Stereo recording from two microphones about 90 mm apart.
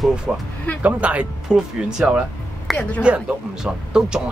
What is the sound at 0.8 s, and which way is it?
Speech, 15° right (ahead or behind).